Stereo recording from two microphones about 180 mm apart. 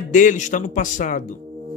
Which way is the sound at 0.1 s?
45° left (ahead or behind).